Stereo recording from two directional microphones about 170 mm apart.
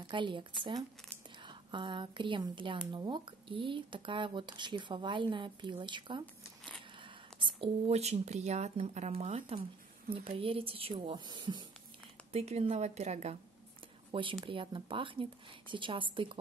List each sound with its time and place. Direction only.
0.1 s speech: 30° right (ahead or behind)
12.3 s speech: 35° right (ahead or behind)
14.4 s speech: 30° right (ahead or behind)